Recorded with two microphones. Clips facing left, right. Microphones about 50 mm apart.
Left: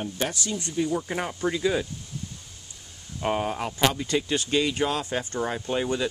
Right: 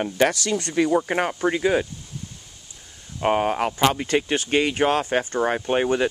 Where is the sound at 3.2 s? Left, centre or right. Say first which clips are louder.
Right 6 dB; right.